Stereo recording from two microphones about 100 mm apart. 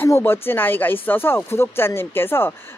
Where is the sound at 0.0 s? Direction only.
20° left (ahead or behind).